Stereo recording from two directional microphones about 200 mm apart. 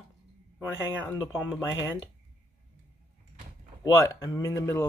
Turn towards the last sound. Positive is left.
turn(degrees=15)  # may be behind; listen again after turning